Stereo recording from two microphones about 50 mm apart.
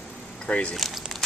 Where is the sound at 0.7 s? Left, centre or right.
Centre.